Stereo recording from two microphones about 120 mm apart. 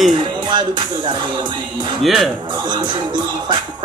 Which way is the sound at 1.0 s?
40° right (ahead or behind).